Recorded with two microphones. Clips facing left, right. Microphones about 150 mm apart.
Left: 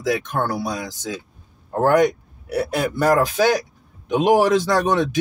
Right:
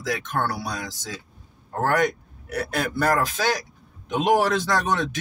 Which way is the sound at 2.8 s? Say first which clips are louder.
Left 5 dB; 10° left (ahead or behind).